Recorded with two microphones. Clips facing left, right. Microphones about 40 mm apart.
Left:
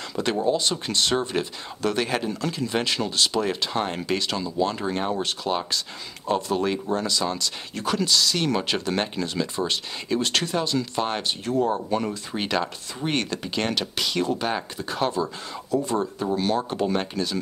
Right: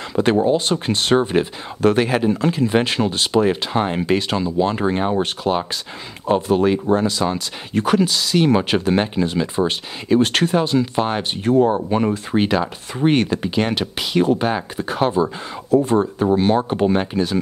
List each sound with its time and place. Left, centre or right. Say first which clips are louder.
0.1 s speech: right 7 dB; right
8.0 s speech: right 6 dB; centre
11.4 s speech: right 9 dB; right
13.1 s speech: right 5 dB; centre